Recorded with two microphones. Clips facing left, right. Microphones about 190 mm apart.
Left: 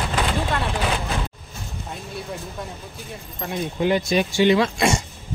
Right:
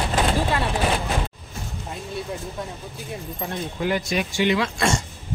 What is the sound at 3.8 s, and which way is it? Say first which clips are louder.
Speech: left 4 dB; 25° left (ahead or behind).